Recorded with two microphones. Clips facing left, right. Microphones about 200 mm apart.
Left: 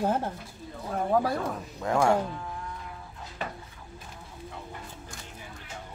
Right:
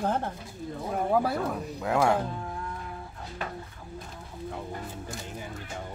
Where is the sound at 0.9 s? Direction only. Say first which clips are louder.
Even; 5° right (ahead or behind).